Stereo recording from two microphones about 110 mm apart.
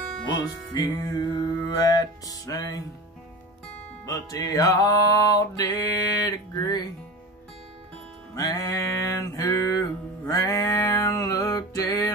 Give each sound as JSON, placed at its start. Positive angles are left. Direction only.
{"t": 0.3, "sound": "music", "side_deg": 45}
{"t": 4.0, "sound": "music", "side_deg": 30}
{"t": 8.4, "sound": "music", "side_deg": 35}